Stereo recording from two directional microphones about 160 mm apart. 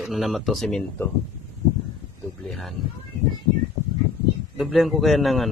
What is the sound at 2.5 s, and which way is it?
Speech, centre (ahead or behind).